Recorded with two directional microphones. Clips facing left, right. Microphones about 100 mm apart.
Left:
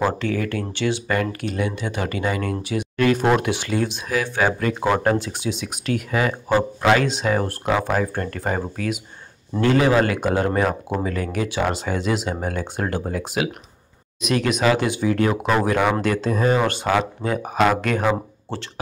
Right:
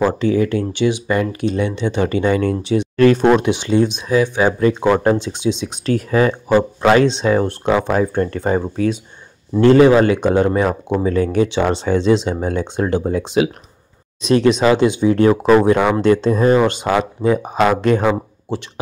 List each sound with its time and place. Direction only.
0.0 s speech: 20° right (ahead or behind)